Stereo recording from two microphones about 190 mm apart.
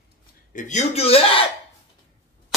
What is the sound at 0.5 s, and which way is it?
Speech, 40° left (ahead or behind).